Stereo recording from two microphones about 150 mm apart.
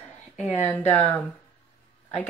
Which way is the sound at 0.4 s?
50° left (ahead or behind).